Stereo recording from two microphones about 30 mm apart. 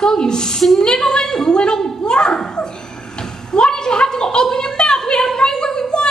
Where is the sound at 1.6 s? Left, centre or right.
Left.